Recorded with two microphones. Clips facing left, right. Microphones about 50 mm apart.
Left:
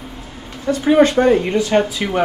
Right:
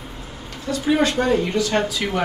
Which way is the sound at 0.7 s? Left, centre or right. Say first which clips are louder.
Left 6 dB; left.